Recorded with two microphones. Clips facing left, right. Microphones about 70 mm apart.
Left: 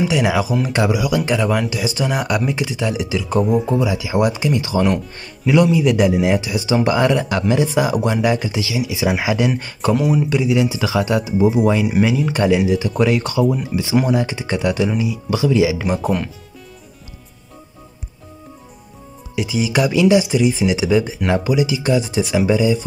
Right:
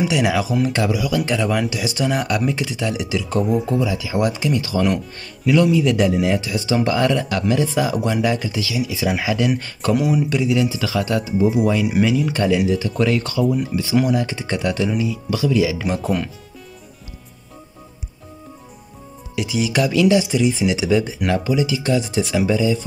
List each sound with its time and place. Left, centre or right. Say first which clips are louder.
0.0 s speech: left 1 dB; centre
0.8 s speech: left 2 dB; centre
3.6 s speech: left 2 dB; centre
4.8 s speech: left 2 dB; centre
5.5 s speech: left 1 dB; centre
8.5 s speech: left 1 dB; left
9.9 s speech: left 1 dB; centre
10.3 s speech: left 2 dB; centre
10.6 s speech: left 2 dB; centre
11.5 s speech: left 2 dB; left
12.3 s speech: left 2 dB; centre
19.3 s speech: left 1 dB; centre